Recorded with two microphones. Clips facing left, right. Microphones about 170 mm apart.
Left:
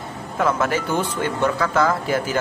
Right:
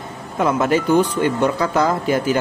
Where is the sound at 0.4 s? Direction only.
20° right (ahead or behind).